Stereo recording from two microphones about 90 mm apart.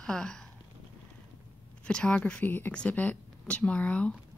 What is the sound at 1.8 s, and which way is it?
Speech, 10° left (ahead or behind).